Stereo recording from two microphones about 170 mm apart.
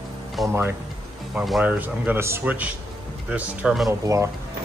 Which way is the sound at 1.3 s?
5° right (ahead or behind).